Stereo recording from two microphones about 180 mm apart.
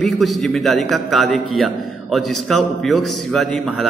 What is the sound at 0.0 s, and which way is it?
A man's voice, centre (ahead or behind).